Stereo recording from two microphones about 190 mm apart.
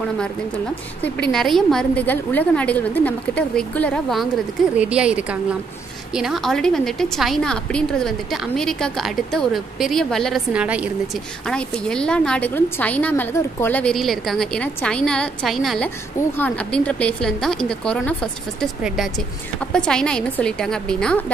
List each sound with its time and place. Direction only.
1.3 s a woman's voice: centre (ahead or behind)
11.4 s a woman's voice: 5° left (ahead or behind)